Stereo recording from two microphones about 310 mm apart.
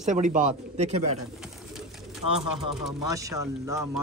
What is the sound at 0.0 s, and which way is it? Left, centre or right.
Speech, right.